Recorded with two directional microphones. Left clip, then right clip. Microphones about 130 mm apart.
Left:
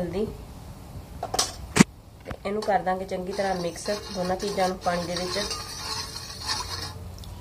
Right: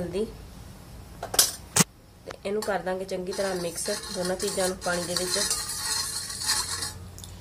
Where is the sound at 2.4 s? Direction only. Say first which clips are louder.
Left 4 dB; 55° right (ahead or behind).